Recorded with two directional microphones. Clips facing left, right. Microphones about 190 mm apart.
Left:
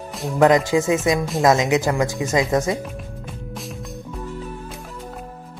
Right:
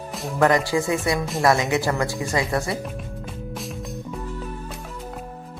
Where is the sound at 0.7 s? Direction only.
20° left (ahead or behind).